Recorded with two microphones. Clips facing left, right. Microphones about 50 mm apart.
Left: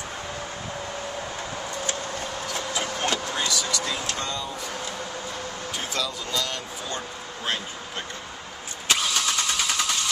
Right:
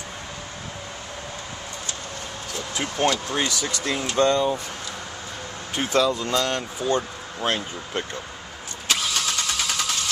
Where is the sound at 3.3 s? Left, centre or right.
Right.